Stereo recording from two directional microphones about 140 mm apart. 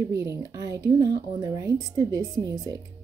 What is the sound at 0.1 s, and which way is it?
A woman's voice, 20° right (ahead or behind).